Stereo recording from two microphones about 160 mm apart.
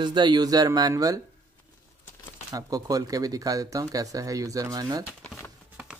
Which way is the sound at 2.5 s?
20° right (ahead or behind).